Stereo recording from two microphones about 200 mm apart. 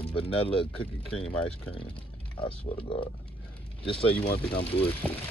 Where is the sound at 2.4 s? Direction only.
25° left (ahead or behind).